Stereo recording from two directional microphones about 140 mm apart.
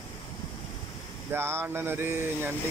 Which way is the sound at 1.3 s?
15° right (ahead or behind).